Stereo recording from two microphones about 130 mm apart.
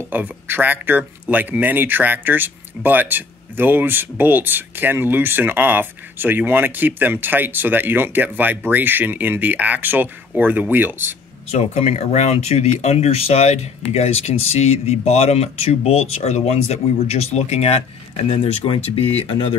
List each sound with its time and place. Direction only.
0.1 s speech: 15° right (ahead or behind)
11.5 s speech: 55° left (ahead or behind)